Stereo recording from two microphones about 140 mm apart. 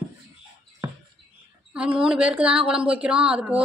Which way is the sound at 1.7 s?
5° right (ahead or behind).